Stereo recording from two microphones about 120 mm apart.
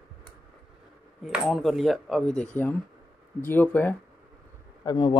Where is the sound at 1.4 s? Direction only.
Centre (ahead or behind).